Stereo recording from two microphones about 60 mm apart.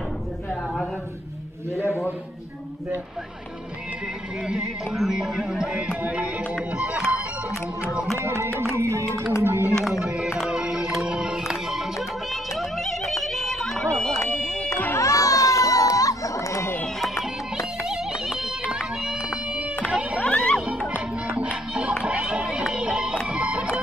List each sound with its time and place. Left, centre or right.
4.5 s music: centre
8.3 s music: right
9.4 s a sound: right
10.0 s music: centre
12.3 s a sound: centre
14.3 s music: centre
15.0 s crowd: left
17.8 s music: centre
20.2 s music: left
20.9 s music: right
22.0 s a sound: centre
23.2 s music: right